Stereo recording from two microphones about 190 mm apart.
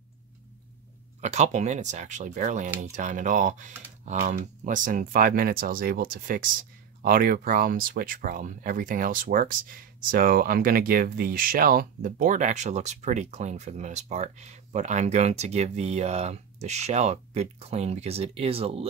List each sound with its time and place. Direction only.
1.2 s speech: 35° right (ahead or behind)